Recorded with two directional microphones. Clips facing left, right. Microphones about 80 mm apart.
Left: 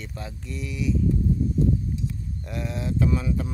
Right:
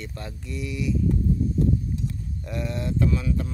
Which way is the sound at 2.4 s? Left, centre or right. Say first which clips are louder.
Right 2 dB; centre.